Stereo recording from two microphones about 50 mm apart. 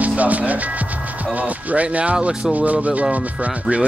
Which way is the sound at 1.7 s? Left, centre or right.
Right.